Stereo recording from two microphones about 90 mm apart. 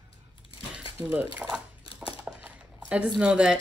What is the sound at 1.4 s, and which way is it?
Speech, 10° right (ahead or behind).